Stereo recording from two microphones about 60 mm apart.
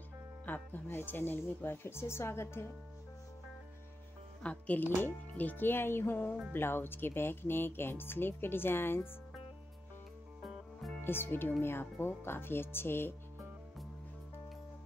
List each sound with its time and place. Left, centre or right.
0.5 s speech: left
4.4 s speech: left
11.0 s speech: left